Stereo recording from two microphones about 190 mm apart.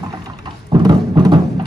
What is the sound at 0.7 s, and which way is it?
Music, 25° right (ahead or behind).